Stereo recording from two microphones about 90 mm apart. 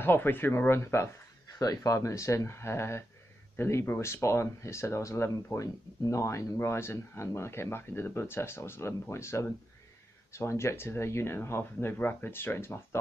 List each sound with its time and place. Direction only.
0.0 s speech: 25° left (ahead or behind)
1.6 s speech: 40° left (ahead or behind)